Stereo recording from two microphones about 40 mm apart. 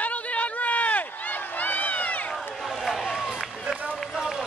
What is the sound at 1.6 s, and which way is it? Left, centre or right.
Run, left.